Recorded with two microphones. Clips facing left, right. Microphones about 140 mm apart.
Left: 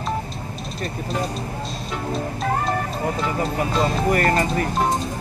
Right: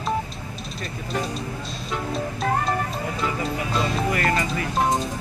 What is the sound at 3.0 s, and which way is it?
Music, 45° left (ahead or behind).